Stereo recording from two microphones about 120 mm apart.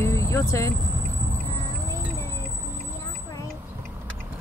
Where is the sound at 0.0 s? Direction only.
25° left (ahead or behind).